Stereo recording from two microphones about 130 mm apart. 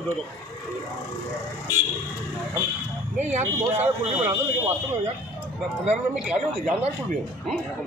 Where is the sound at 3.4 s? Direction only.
20° right (ahead or behind).